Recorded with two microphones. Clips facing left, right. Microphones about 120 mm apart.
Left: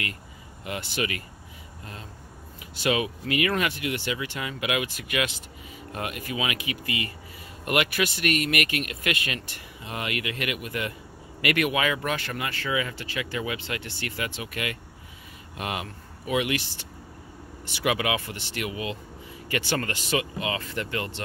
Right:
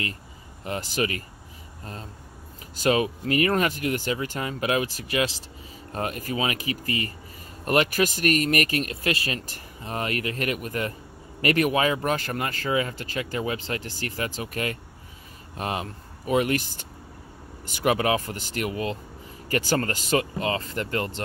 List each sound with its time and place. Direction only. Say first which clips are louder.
0.7 s speech: right 3 dB; 40° right (ahead or behind)
2.7 s speech: right 3 dB; 40° right (ahead or behind)